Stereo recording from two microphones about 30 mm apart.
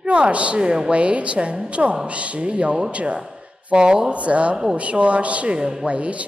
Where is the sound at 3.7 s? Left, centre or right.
Right.